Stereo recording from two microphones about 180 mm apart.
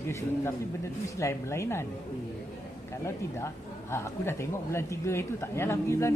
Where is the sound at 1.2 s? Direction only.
15° left (ahead or behind).